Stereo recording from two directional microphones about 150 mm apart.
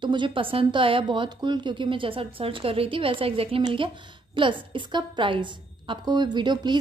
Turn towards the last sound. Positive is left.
turn(degrees=-30)  # may be behind; listen again after turning